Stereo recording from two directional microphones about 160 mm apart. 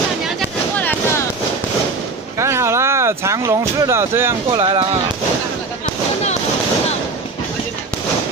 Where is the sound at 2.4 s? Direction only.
15° right (ahead or behind).